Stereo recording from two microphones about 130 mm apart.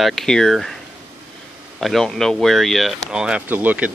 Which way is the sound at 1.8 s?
Centre (ahead or behind).